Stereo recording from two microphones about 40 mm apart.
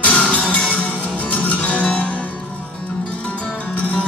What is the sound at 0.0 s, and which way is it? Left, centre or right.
Music, left.